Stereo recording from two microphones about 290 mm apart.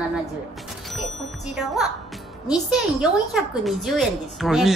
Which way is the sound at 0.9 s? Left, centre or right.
Centre.